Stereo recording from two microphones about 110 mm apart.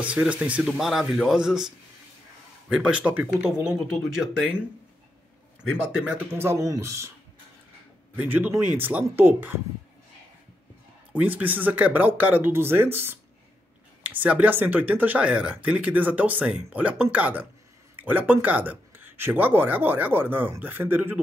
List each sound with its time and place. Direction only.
0.0 s speech: 10° right (ahead or behind)
2.7 s speech: 10° right (ahead or behind)
6.3 s speech: 25° right (ahead or behind)
8.2 s speech: 15° right (ahead or behind)
11.1 s speech: 15° right (ahead or behind)